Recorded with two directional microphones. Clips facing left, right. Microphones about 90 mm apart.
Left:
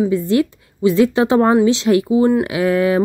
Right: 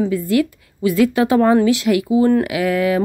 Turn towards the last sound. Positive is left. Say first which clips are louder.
# left 2 dB
turn(degrees=30)  # may be behind; listen again after turning